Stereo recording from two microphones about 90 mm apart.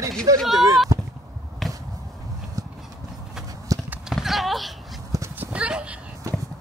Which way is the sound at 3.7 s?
40° right (ahead or behind).